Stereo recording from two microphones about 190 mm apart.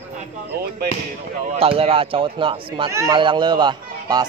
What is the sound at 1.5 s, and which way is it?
Speech, 30° right (ahead or behind).